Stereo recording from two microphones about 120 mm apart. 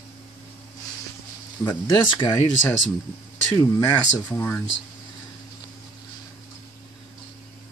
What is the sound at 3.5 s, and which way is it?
Speech, 25° left (ahead or behind).